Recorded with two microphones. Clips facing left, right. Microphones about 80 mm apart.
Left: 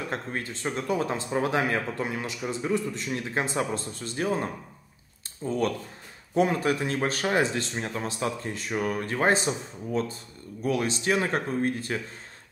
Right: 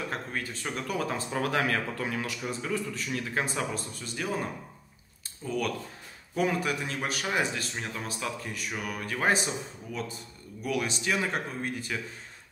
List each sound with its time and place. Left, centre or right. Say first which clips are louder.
0.1 s a man's voice: left 2 dB; left